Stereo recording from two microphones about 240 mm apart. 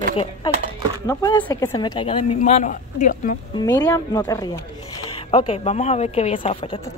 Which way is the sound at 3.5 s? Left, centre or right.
Centre.